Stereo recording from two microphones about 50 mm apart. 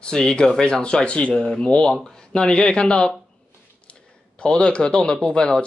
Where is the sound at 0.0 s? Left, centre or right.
Centre.